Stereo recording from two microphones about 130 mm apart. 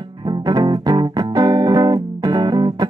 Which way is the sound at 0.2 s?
35° right (ahead or behind).